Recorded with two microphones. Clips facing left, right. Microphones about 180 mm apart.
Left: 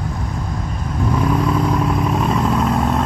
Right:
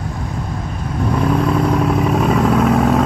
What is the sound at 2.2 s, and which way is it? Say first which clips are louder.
Vehicle: right 4 dB; 55° right (ahead or behind).